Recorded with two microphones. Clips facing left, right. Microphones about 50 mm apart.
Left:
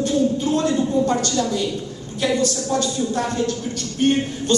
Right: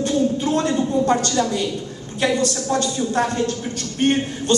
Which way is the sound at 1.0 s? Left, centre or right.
Right.